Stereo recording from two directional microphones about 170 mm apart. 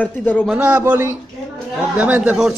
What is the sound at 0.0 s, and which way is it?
Speech, 10° left (ahead or behind).